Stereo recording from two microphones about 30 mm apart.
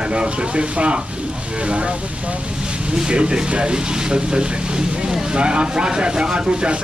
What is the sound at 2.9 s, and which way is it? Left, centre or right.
Speech, right.